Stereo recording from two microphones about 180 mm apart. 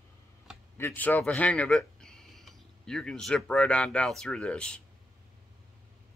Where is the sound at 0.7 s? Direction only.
10° left (ahead or behind).